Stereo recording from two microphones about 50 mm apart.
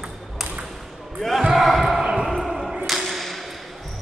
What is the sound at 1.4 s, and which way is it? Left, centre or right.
Basketball bounce, centre.